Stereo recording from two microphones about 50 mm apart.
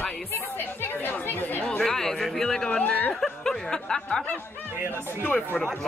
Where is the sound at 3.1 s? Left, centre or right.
Centre.